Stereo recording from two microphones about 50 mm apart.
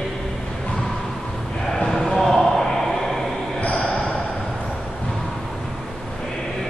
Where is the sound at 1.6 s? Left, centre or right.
Centre.